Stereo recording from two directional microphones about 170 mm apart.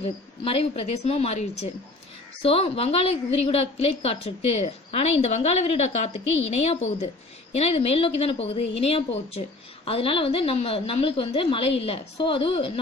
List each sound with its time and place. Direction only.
0.0 s a woman's voice: 35° left (ahead or behind)